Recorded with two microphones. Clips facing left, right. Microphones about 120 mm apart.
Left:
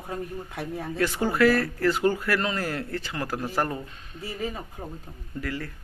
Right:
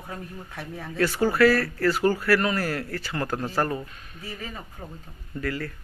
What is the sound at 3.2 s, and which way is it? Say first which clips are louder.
Speech: right 2 dB; 10° left (ahead or behind).